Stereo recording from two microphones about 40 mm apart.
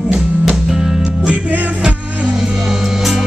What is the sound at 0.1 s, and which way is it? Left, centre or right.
Music, centre.